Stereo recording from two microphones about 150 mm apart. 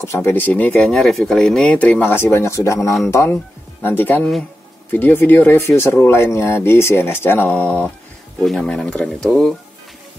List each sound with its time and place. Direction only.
0.0 s speech: 20° left (ahead or behind)